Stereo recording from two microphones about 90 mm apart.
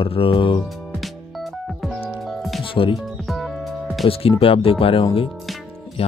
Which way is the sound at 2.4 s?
Centre (ahead or behind).